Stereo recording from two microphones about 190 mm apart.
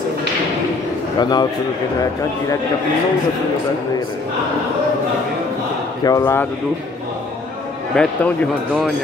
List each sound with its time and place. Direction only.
1.2 s a man's voice: 20° left (ahead or behind)
6.0 s speech: 15° left (ahead or behind)
7.9 s speech: 5° left (ahead or behind)